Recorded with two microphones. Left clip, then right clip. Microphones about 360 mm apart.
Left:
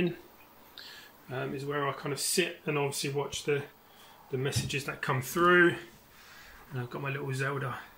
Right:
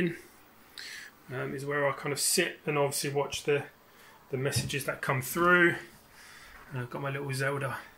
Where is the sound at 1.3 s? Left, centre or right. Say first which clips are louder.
Right 1 dB; centre.